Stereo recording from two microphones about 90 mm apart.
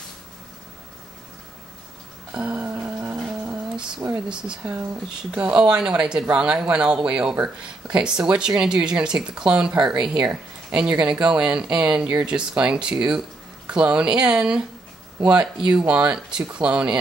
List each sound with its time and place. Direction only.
2.3 s music: 15° right (ahead or behind)
3.7 s speech: 10° right (ahead or behind)